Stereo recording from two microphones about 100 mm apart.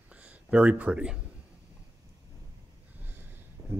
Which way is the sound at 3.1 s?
20° right (ahead or behind).